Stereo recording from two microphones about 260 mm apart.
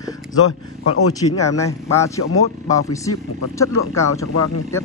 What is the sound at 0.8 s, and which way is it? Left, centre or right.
Speech, left.